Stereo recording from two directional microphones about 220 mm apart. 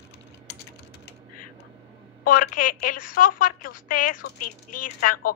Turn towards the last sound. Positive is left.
turn(degrees=40)  # may be behind; listen again after turning